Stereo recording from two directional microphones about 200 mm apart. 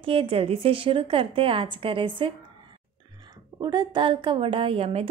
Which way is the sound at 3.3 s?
20° right (ahead or behind).